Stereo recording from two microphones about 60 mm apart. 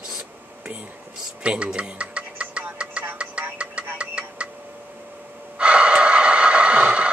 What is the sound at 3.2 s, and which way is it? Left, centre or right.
Music, centre.